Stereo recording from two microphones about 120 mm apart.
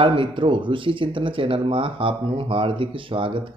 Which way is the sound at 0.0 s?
45° right (ahead or behind).